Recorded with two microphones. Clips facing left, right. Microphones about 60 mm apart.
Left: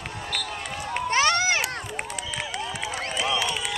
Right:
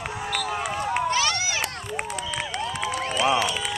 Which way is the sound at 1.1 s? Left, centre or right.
Left.